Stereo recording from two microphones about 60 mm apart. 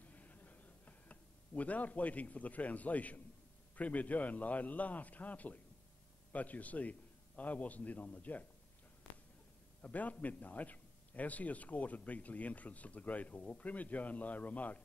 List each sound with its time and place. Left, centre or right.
0.0 s a sound: left
3.7 s speech: left
9.8 s speech: left